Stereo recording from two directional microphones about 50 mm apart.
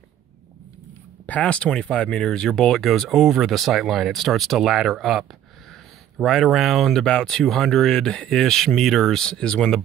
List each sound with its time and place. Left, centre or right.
1.2 s speech: left; by 5.2 s centre
6.2 s speech: centre
6.9 s speech: centre